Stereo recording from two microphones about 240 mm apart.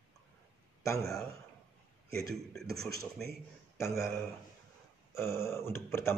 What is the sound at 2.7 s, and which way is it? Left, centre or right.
Speech, right.